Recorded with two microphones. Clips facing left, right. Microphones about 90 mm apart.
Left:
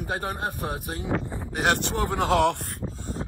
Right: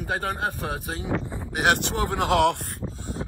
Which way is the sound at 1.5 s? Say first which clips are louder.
Right 2 dB; 60° right (ahead or behind).